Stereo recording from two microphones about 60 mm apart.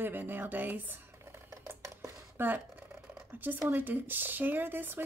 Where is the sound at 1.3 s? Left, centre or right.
Right.